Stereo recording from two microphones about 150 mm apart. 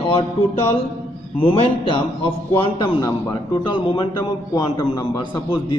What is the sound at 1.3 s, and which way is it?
A man's voice, 40° left (ahead or behind).